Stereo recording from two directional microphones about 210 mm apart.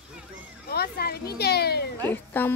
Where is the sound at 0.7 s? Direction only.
50° left (ahead or behind).